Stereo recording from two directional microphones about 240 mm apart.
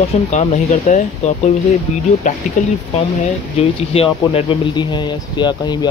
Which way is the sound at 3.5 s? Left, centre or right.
Left.